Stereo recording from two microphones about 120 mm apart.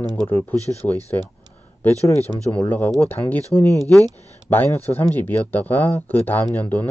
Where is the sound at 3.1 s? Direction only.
15° left (ahead or behind).